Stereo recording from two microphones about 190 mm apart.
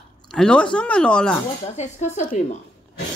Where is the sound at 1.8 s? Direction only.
35° left (ahead or behind).